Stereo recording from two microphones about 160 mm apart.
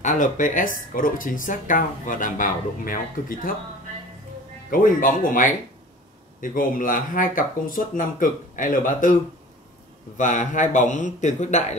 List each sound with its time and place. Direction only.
0.0 s speech: 50° left (ahead or behind)
4.6 s speech: 60° left (ahead or behind)
10.1 s a man's voice: 55° left (ahead or behind)